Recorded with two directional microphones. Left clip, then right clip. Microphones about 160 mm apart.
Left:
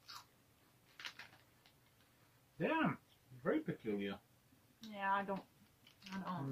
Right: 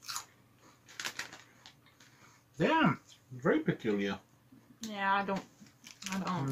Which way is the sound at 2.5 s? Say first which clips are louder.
Right 9 dB; 10° right (ahead or behind).